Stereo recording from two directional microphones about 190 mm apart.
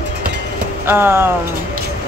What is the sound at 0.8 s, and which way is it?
Speech, 10° right (ahead or behind).